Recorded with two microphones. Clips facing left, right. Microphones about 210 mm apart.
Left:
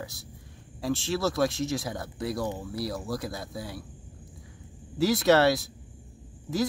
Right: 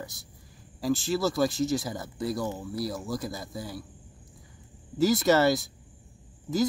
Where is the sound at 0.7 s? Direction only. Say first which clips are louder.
Right 2 dB; centre (ahead or behind).